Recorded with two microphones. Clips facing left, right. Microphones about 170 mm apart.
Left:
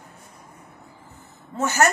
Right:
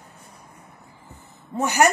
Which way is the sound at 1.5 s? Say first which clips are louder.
Right 2 dB; 15° right (ahead or behind).